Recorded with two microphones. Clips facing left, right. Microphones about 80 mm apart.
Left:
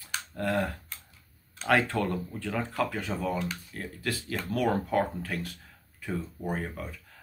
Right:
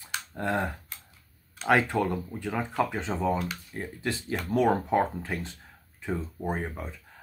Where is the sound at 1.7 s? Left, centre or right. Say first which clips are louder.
Right 2 dB; centre.